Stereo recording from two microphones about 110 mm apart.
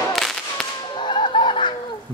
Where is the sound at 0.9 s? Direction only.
45° left (ahead or behind).